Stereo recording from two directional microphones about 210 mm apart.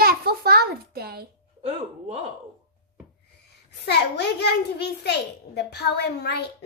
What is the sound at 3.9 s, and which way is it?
A child's voice, 50° left (ahead or behind).